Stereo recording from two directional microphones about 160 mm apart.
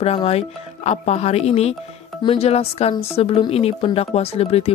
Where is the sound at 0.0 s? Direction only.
40° left (ahead or behind).